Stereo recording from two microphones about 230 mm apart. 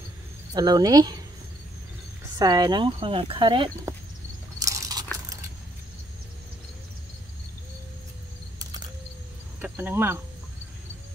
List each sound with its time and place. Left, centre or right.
0.6 s speech: centre
2.3 s speech: centre
4.6 s biting: centre
9.6 s speech: centre